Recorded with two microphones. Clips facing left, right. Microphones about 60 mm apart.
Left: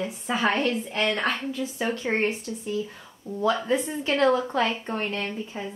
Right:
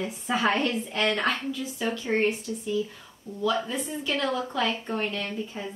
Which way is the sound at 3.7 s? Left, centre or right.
Left.